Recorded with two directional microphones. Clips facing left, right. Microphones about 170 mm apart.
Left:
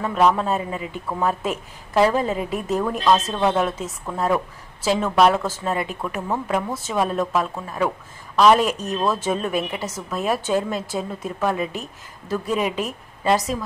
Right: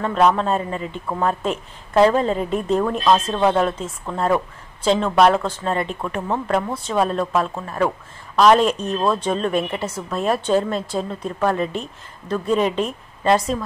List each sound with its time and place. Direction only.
0.0 s a woman's voice: 5° left (ahead or behind)